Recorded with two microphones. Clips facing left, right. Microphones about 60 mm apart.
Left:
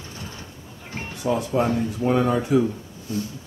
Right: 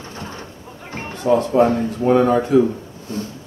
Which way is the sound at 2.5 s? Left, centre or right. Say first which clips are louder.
Right 5 dB; centre.